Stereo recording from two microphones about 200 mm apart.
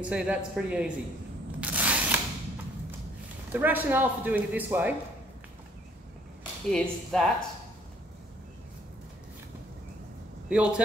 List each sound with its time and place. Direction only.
0.0 s speech: 5° right (ahead or behind)
1.6 s a sound: 5° right (ahead or behind)
3.5 s speech: 10° right (ahead or behind)
6.7 s speech: centre (ahead or behind)
10.5 s speech: 5° right (ahead or behind)